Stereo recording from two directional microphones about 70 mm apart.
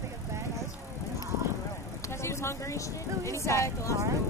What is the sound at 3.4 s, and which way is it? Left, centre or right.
Speech, left.